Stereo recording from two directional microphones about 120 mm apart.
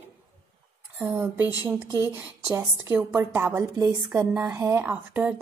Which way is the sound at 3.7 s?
35° right (ahead or behind).